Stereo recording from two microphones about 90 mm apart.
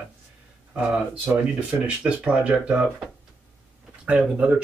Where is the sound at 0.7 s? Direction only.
5° right (ahead or behind).